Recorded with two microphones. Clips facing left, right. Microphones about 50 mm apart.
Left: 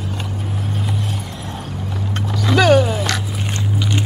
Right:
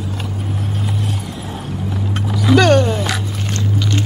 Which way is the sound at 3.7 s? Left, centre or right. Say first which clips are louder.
Right 1 dB; centre.